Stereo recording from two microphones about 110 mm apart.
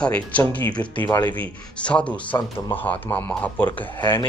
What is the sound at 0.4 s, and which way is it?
Speech, 15° left (ahead or behind).